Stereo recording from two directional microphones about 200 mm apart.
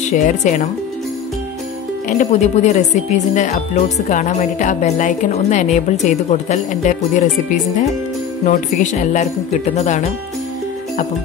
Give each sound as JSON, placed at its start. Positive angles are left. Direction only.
{"t": 0.0, "sound": "speech", "side_deg": 35}
{"t": 2.0, "sound": "speech", "side_deg": 35}
{"t": 8.5, "sound": "speech", "side_deg": 35}